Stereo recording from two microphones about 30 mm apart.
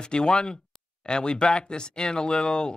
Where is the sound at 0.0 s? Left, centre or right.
Left.